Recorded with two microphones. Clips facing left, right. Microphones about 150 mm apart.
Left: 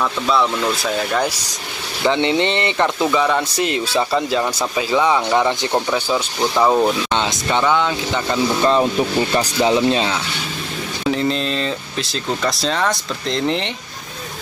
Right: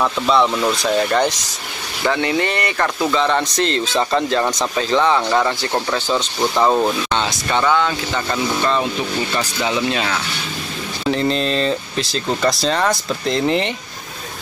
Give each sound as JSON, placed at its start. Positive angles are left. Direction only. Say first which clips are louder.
{"t": 0.3, "sound": "speech", "louder": "right 2 dB", "side_deg": 0}
{"t": 2.0, "sound": "speech", "louder": "left 2 dB", "side_deg": 20}
{"t": 7.2, "sound": "speech", "louder": "left 1 dB", "side_deg": 15}
{"t": 9.3, "sound": "speech", "louder": "left 5 dB", "side_deg": 35}
{"t": 11.1, "sound": "speech", "louder": "right 1 dB", "side_deg": 0}